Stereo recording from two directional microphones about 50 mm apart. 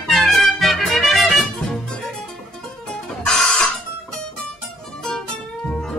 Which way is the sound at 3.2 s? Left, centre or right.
Centre.